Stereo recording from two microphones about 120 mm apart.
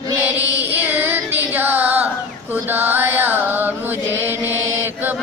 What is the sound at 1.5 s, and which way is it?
Music, 15° right (ahead or behind).